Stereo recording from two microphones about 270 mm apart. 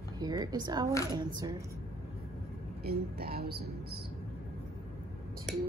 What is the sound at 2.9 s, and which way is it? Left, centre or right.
A woman's voice, right.